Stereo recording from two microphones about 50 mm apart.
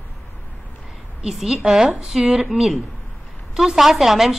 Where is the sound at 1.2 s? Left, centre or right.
Centre.